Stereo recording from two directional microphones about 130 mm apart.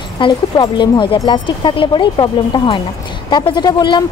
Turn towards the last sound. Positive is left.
turn(degrees=35)  # may be behind; listen again after turning